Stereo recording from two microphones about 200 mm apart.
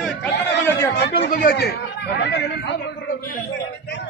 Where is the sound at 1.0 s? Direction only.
50° left (ahead or behind).